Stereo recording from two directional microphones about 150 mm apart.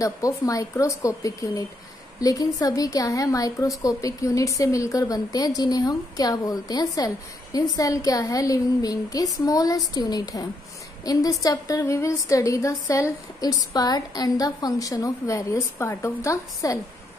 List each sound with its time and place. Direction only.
0.0 s a woman's voice: 20° left (ahead or behind)